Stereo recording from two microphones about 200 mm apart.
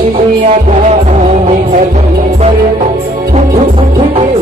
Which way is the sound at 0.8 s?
35° right (ahead or behind).